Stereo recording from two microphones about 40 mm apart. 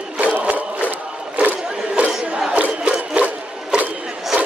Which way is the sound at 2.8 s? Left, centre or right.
Right.